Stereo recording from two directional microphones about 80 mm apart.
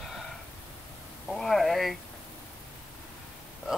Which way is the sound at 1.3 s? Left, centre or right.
Centre.